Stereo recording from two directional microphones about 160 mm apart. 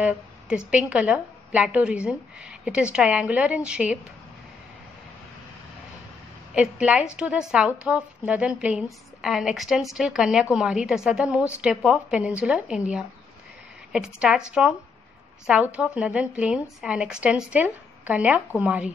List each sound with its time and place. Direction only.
0.7 s a woman's voice: 5° right (ahead or behind)
6.5 s a woman's voice: 5° right (ahead or behind)